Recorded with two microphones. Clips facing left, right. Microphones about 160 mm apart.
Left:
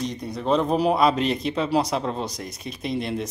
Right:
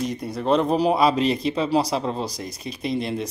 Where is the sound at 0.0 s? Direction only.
5° right (ahead or behind).